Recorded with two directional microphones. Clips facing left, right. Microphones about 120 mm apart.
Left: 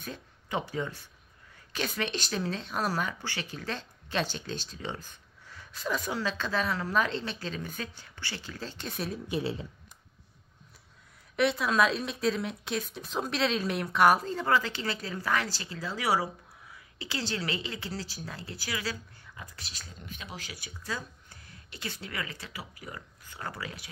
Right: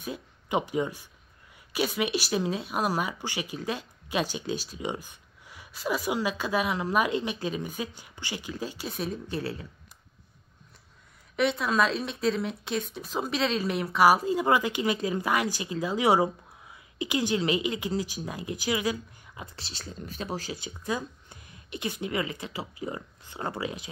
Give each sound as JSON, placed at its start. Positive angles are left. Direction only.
{"t": 0.0, "sound": "a woman's voice", "side_deg": -15}
{"t": 9.3, "sound": "speech", "side_deg": 20}
{"t": 11.3, "sound": "a woman's voice", "side_deg": 0}